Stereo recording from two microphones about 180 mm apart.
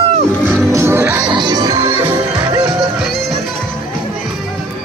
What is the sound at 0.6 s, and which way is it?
Music, 15° right (ahead or behind).